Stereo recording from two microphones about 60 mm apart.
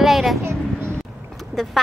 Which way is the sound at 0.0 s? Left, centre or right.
Centre.